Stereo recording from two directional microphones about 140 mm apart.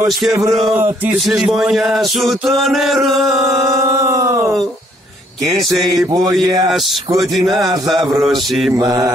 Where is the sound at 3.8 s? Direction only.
20° right (ahead or behind).